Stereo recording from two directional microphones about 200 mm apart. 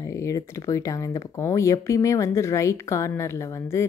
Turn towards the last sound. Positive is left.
turn(degrees=15)  # may be behind; listen again after turning